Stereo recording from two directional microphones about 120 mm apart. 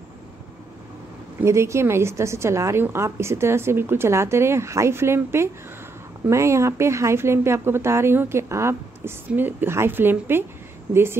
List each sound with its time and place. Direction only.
1.4 s a woman's voice: 25° right (ahead or behind)